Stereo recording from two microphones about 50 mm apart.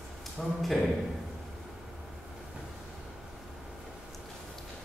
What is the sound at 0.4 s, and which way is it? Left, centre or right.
Speech, centre.